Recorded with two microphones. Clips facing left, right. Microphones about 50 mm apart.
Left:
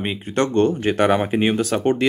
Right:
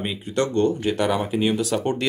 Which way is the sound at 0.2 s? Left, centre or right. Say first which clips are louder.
Left 3 dB; left.